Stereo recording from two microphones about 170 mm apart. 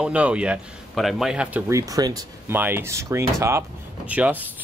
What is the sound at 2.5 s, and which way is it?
Speech, 10° right (ahead or behind).